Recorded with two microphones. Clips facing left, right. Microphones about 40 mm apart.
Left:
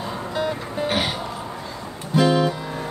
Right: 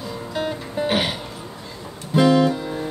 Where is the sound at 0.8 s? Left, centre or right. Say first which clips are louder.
Right 2 dB; right.